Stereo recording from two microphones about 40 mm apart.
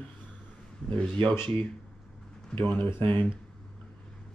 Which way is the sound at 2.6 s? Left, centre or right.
Left.